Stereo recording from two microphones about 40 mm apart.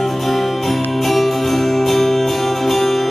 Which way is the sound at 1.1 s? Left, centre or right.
Centre.